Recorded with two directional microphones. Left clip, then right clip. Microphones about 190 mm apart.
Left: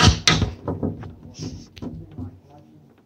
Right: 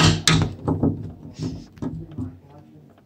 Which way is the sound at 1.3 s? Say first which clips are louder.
Right 4 dB; 35° left (ahead or behind).